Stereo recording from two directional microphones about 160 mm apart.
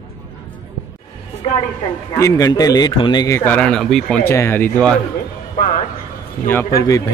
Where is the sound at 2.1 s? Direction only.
20° left (ahead or behind); by 4.2 s 5° left (ahead or behind).